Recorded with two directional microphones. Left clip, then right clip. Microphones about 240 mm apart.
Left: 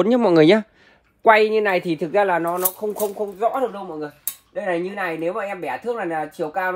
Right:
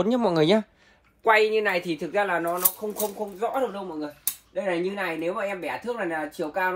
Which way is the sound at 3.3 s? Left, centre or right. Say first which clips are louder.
Left 5 dB; left.